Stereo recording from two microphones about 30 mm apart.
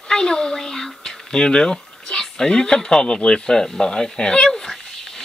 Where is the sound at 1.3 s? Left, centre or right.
Left.